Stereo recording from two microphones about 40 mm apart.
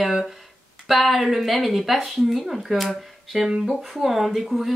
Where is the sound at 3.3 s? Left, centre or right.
Centre.